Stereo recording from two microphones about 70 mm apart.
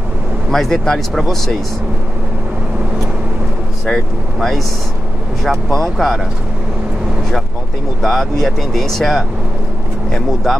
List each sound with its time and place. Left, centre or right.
0.5 s speech: centre
3.8 s speech: centre
8.0 s speech: centre